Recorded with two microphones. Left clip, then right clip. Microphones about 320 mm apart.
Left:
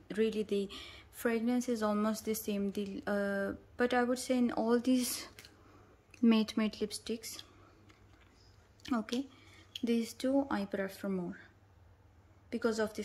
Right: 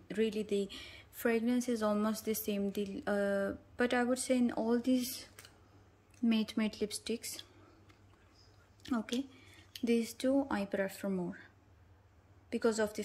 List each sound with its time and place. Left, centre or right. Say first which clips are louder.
0.1 s a woman's voice: left 1 dB; centre
8.8 s a woman's voice: left 1 dB; centre